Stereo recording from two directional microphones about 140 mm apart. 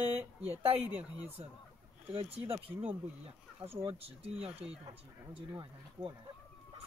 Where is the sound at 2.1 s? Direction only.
45° right (ahead or behind).